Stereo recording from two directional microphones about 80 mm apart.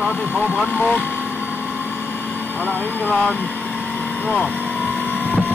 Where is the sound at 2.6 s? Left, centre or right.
Centre.